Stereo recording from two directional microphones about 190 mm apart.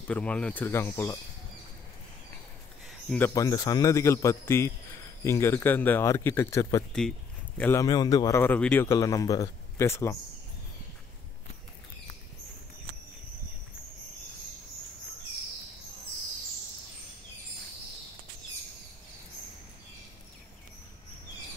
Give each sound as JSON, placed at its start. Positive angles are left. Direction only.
{"t": 0.1, "sound": "speech", "side_deg": 5}
{"t": 2.9, "sound": "a sound", "side_deg": 5}
{"t": 3.3, "sound": "speech", "side_deg": 20}
{"t": 6.9, "sound": "speech", "side_deg": 5}
{"t": 7.8, "sound": "speech", "side_deg": 20}